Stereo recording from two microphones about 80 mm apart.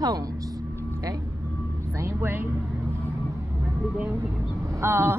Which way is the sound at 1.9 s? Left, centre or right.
Right.